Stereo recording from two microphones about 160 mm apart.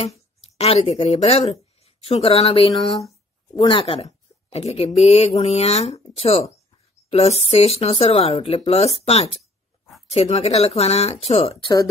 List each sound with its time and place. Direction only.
0.0 s a woman's voice: 40° left (ahead or behind)
9.4 s a sound: centre (ahead or behind)
10.1 s a woman's voice: 40° left (ahead or behind)